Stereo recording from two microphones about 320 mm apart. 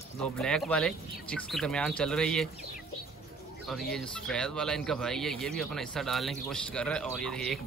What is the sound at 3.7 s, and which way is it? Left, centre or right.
Speech, centre.